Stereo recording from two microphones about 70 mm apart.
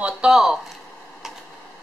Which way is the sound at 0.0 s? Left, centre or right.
Centre.